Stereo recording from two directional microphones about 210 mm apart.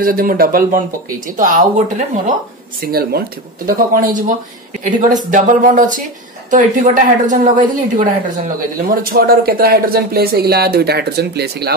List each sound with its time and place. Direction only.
0.0 s speech: 40° right (ahead or behind)
2.8 s speech: 45° right (ahead or behind)